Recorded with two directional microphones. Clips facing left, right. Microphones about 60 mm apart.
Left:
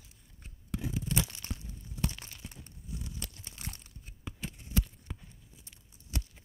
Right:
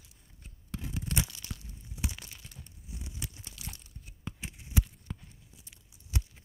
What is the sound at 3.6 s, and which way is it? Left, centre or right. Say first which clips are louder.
Crunch: left 3 dB; left.